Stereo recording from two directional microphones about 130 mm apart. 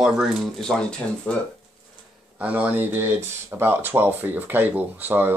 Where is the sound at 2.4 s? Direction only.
10° right (ahead or behind).